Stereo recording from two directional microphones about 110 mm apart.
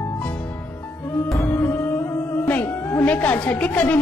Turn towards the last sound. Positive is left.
turn(degrees=15)  # may be behind; listen again after turning